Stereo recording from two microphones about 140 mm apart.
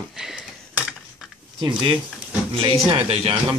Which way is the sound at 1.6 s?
35° right (ahead or behind).